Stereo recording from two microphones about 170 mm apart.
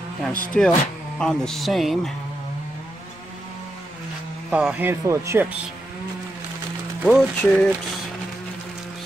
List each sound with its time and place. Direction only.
0.2 s speech: 5° left (ahead or behind)
4.5 s speech: 10° right (ahead or behind)
7.0 s speech: centre (ahead or behind)